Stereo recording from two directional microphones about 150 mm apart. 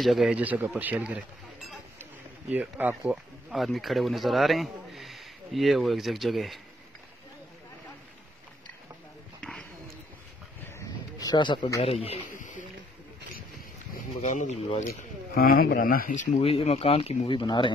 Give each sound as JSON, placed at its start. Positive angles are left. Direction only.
{"t": 0.0, "sound": "speech", "side_deg": 0}
{"t": 2.5, "sound": "speech", "side_deg": -10}
{"t": 9.4, "sound": "a sound", "side_deg": 5}
{"t": 10.8, "sound": "speech", "side_deg": 25}
{"t": 12.4, "sound": "a sound", "side_deg": 60}
{"t": 14.2, "sound": "a man's voice", "side_deg": 50}
{"t": 15.3, "sound": "speech", "side_deg": 85}
{"t": 16.3, "sound": "speech", "side_deg": 40}